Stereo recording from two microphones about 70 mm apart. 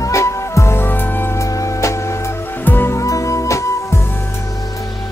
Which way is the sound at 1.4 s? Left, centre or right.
Left.